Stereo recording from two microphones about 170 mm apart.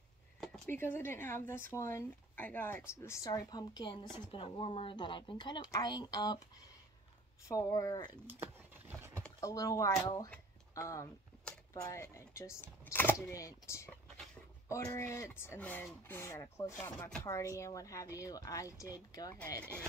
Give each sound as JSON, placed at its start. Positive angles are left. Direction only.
{"t": 0.4, "sound": "speech", "side_deg": 10}
{"t": 7.4, "sound": "speech", "side_deg": 20}
{"t": 8.3, "sound": "a sound", "side_deg": -10}
{"t": 9.4, "sound": "speech", "side_deg": 20}